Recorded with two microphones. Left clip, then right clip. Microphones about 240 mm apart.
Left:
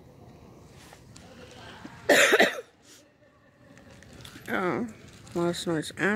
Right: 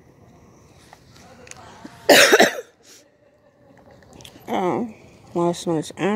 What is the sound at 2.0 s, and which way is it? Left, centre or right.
Cough, right.